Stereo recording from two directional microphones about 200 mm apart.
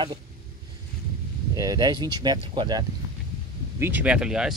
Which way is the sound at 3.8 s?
10° right (ahead or behind).